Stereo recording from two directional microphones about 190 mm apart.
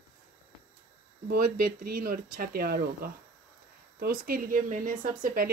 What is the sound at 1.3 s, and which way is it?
Speech, 55° right (ahead or behind).